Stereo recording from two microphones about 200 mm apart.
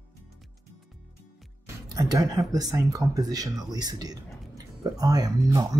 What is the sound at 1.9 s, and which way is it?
Speech, 20° right (ahead or behind).